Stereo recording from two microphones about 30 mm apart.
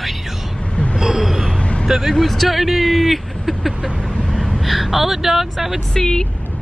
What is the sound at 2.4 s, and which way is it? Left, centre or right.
Speech, centre.